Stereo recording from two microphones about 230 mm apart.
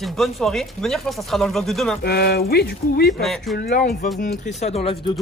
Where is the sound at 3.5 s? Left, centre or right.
Left.